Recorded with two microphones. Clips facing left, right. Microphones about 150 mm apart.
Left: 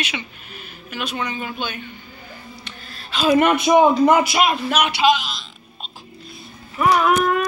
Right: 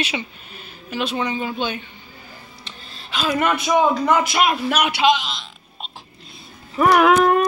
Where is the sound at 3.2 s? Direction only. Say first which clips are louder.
Left 5 dB; 20° left (ahead or behind).